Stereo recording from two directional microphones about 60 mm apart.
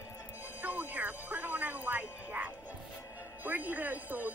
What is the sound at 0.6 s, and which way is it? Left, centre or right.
Music, right.